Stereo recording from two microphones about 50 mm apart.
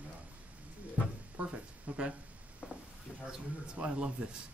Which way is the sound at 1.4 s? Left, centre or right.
Right.